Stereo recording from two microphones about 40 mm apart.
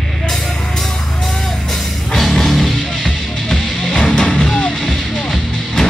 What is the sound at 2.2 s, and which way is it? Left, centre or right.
Music, centre.